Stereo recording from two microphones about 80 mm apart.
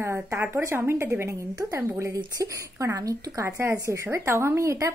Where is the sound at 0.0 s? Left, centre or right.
Right.